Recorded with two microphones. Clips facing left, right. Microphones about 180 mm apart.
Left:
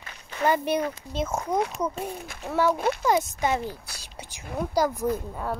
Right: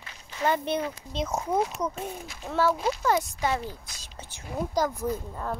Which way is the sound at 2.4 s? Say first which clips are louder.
Left 2 dB; 15° left (ahead or behind).